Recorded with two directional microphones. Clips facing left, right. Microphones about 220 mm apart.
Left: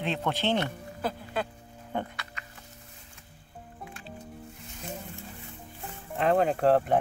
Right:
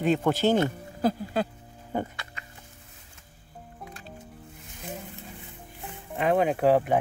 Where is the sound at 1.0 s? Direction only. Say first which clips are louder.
Right 6 dB; 40° right (ahead or behind).